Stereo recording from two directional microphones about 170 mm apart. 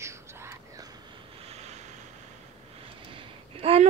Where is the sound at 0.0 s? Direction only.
15° right (ahead or behind); by 2.0 s 40° right (ahead or behind).